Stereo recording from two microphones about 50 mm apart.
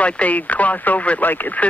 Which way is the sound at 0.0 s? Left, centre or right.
Left.